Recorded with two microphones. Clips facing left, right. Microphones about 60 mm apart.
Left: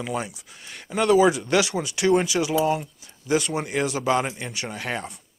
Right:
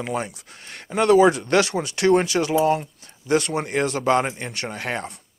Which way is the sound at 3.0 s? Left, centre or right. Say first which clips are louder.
Right 2 dB; right.